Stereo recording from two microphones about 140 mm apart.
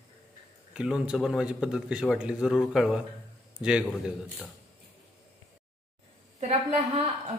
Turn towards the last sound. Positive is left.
turn(degrees=-45)  # may be behind; listen again after turning